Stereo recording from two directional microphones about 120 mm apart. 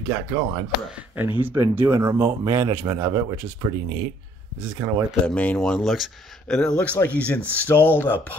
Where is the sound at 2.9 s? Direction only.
40° right (ahead or behind).